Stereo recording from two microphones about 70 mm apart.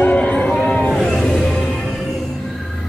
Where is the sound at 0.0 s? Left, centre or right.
Centre.